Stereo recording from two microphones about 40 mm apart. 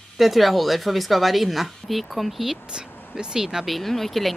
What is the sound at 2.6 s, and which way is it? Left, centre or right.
Speech, right.